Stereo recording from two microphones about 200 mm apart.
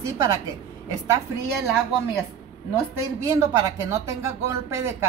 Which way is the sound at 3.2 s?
15° right (ahead or behind).